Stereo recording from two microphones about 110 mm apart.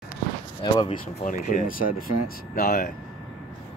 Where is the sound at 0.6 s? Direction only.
45° left (ahead or behind).